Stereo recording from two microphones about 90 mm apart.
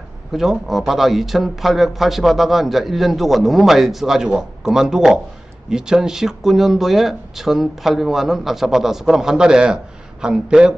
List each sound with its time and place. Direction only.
0.3 s a man's voice: 5° right (ahead or behind)